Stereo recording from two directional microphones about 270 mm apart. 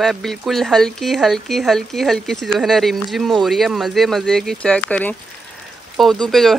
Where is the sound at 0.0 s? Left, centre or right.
Centre.